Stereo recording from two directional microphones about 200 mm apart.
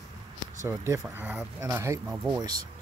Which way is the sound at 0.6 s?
15° right (ahead or behind).